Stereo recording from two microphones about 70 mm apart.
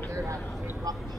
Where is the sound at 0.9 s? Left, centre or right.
Right.